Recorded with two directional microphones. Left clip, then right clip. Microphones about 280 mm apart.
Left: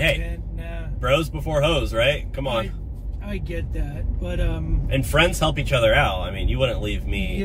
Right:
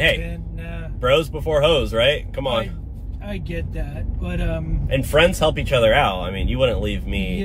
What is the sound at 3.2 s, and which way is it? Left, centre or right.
Speech, centre.